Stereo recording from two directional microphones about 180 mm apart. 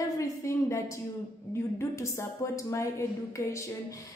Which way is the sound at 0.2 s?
15° left (ahead or behind).